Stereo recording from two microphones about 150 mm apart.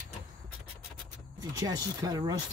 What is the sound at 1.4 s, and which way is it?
Speech, 25° right (ahead or behind).